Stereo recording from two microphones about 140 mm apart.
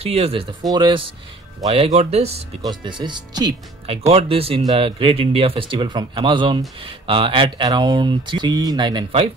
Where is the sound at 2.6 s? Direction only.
35° right (ahead or behind).